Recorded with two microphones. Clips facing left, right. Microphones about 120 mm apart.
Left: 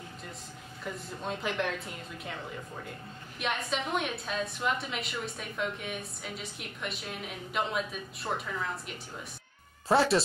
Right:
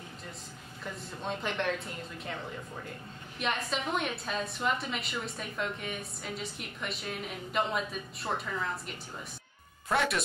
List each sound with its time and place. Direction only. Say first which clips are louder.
0.8 s a woman's voice: left 1 dB; centre (ahead or behind)
3.3 s a woman's voice: even; centre (ahead or behind)
9.8 s speech: left 5 dB; 30° left (ahead or behind)